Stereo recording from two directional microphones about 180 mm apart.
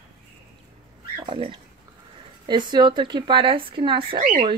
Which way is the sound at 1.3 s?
30° right (ahead or behind).